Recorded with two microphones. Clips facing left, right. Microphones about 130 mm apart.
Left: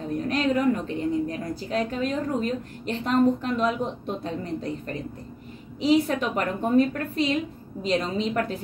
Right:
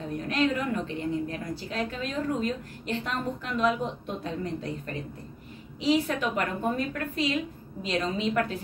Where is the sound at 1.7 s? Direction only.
40° left (ahead or behind).